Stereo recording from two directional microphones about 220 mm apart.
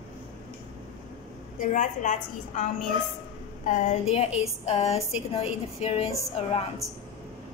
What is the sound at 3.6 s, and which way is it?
A woman's voice, 35° left (ahead or behind).